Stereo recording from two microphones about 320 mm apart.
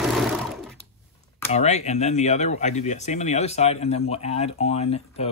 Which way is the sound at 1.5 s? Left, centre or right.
Left.